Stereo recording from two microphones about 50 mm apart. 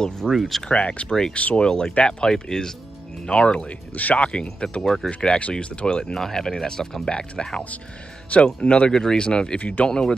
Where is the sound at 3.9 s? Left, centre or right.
Left.